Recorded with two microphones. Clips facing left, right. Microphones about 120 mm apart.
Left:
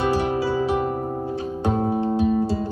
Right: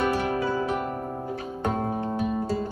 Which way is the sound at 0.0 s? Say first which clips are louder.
Left 3 dB; 30° left (ahead or behind).